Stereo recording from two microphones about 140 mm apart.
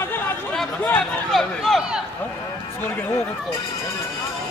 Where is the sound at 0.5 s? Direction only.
5° left (ahead or behind).